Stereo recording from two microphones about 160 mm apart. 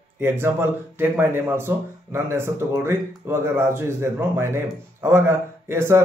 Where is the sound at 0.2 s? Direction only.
15° right (ahead or behind).